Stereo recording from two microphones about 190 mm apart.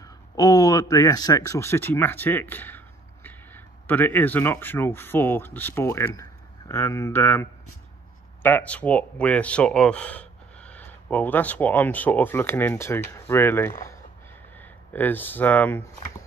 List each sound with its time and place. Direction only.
0.0 s speech: 20° left (ahead or behind)